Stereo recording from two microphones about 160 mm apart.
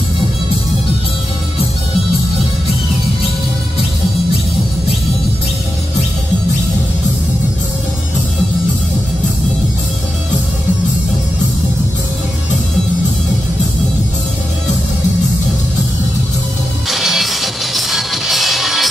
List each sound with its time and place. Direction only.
16.9 s music: centre (ahead or behind)